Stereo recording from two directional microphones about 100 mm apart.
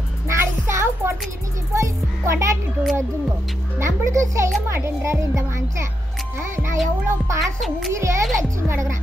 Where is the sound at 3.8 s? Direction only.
30° right (ahead or behind).